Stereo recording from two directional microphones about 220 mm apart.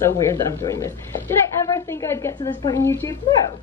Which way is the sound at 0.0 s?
10° left (ahead or behind).